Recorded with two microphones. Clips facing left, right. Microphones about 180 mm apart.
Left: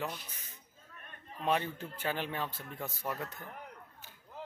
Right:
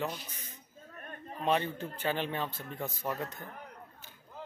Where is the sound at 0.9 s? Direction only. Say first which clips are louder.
Right 7 dB; 45° right (ahead or behind).